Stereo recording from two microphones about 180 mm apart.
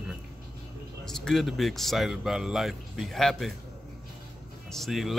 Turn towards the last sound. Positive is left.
turn(degrees=0)  # may be behind; listen again after turning